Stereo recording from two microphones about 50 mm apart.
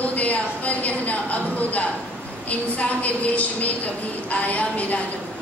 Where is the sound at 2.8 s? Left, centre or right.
Left.